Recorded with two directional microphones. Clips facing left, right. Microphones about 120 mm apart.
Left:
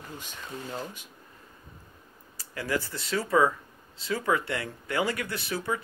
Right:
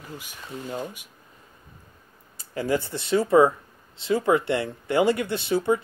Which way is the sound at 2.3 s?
25° right (ahead or behind).